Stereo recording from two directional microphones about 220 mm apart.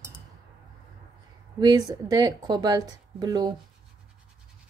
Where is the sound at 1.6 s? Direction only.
15° right (ahead or behind).